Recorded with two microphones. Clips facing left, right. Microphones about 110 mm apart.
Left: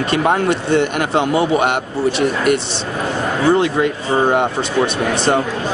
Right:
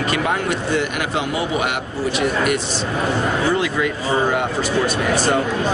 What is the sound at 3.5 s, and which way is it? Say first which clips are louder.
Speech: left 5 dB; 30° left (ahead or behind).